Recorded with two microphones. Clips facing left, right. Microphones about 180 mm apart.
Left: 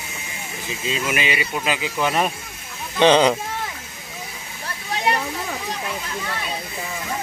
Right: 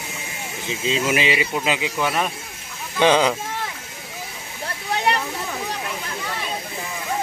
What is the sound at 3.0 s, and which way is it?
Speech, 10° right (ahead or behind).